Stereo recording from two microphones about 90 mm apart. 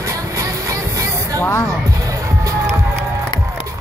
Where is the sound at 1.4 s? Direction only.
25° left (ahead or behind).